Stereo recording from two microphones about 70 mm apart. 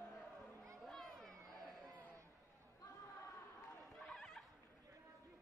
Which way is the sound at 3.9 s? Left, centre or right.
Centre.